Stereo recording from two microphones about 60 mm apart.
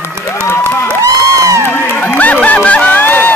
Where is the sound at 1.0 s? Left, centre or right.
Right.